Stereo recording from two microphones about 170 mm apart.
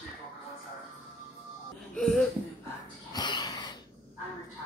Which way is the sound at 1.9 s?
5° left (ahead or behind).